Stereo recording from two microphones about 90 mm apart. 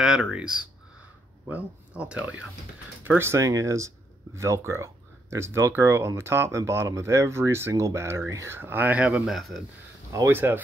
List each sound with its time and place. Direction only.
0.0 s speech: 10° right (ahead or behind)
3.0 s speech: 25° right (ahead or behind); by 9.6 s centre (ahead or behind)
10.2 s speech: 25° right (ahead or behind)